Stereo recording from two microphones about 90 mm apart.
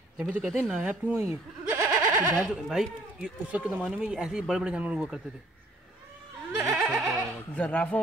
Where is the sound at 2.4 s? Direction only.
Centre (ahead or behind).